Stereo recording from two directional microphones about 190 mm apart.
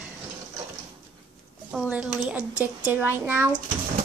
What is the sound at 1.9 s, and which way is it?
A woman's voice, 5° right (ahead or behind).